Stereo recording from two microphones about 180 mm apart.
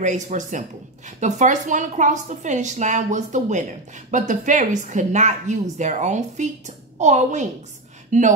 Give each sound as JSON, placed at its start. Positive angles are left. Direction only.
{"t": 0.0, "sound": "speech", "side_deg": -40}